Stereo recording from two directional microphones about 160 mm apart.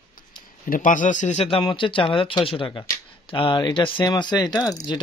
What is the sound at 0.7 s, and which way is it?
Speech, 55° left (ahead or behind).